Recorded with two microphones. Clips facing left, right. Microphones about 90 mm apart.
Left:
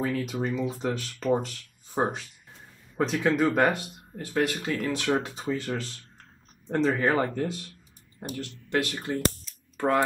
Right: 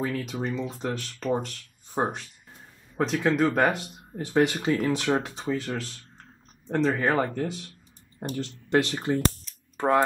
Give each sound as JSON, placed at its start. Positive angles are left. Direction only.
{"t": 0.0, "sound": "speech", "side_deg": 0}
{"t": 4.2, "sound": "speech", "side_deg": -20}
{"t": 4.7, "sound": "speech", "side_deg": -10}
{"t": 5.0, "sound": "speech", "side_deg": 0}
{"t": 8.2, "sound": "speech", "side_deg": -30}